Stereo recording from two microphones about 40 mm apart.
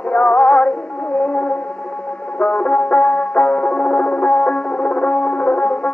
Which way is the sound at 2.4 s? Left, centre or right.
Left.